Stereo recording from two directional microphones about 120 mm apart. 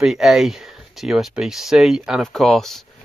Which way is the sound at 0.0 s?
Centre (ahead or behind).